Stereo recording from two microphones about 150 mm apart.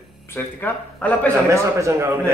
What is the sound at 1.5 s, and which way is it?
Speech, 20° right (ahead or behind).